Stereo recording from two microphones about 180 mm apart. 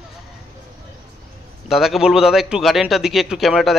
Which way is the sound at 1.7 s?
Centre (ahead or behind).